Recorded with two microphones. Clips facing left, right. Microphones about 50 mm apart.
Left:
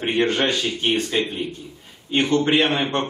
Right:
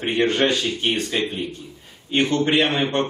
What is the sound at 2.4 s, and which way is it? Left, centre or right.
Speech, centre.